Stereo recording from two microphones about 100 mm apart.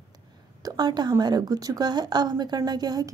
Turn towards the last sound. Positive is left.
turn(degrees=-40)  # may be behind; listen again after turning